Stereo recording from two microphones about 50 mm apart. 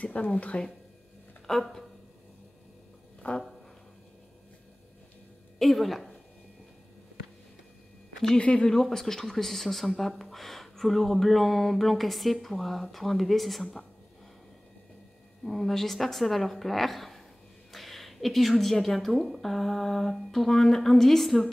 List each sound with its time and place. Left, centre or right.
0.0 s speech: left
1.5 s speech: centre
3.2 s music: left
5.6 s speech: centre
8.4 s speech: left; by 13.7 s centre
15.4 s speech: centre